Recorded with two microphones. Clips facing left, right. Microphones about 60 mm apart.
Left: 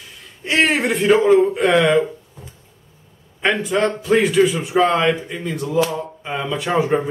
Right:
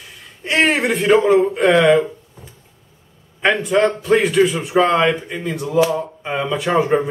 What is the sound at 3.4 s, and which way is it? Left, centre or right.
Speech, centre.